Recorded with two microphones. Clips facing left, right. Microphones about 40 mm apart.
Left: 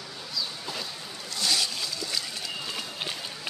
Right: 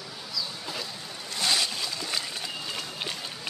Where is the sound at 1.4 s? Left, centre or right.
Right.